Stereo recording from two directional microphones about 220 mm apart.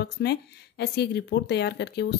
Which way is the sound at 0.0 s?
50° left (ahead or behind).